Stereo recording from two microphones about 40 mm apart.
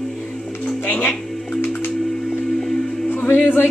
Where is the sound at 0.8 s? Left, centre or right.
Left.